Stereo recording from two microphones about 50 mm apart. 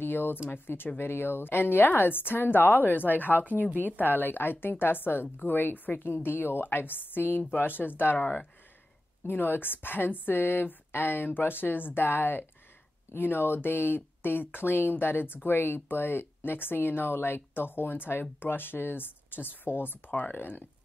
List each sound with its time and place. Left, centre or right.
0.0 s speech: left
3.3 s speech: right
4.0 s speech: left